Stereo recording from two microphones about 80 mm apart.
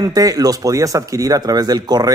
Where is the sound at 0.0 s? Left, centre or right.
Right.